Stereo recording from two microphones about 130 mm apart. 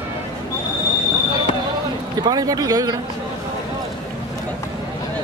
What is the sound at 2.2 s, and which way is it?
Speech, 30° right (ahead or behind).